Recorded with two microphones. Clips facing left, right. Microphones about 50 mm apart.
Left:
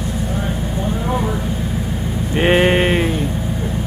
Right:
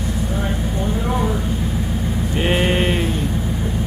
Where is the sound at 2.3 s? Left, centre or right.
Left.